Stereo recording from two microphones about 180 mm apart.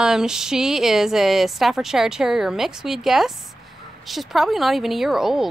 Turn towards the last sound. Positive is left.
turn(degrees=0)  # may be behind; listen again after turning